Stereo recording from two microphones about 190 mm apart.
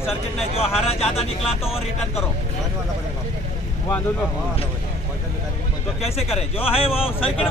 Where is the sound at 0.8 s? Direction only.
30° left (ahead or behind).